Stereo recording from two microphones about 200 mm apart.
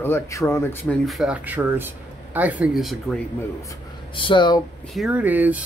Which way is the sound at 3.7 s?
25° left (ahead or behind).